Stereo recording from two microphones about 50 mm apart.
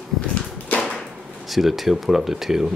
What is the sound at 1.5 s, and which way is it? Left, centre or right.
Speech, centre.